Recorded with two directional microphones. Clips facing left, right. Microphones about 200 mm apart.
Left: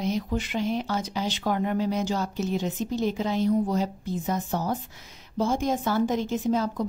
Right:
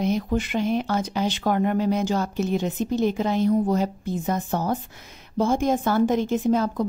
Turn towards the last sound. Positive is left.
turn(degrees=-55)  # may be behind; listen again after turning